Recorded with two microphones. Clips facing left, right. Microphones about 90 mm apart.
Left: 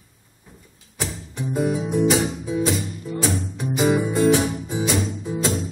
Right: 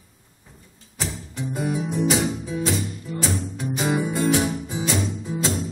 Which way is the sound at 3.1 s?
15° left (ahead or behind).